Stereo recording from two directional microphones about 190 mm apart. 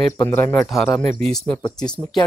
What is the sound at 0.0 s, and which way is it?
Speech, 10° left (ahead or behind).